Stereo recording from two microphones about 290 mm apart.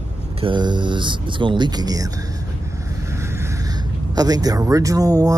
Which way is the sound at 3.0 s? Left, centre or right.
Centre.